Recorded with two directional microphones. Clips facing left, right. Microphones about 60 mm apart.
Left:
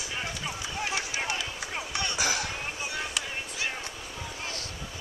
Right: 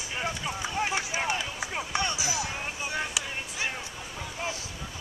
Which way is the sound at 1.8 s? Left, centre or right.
Right.